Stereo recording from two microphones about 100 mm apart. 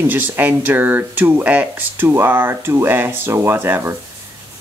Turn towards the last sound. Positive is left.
turn(degrees=-25)  # may be behind; listen again after turning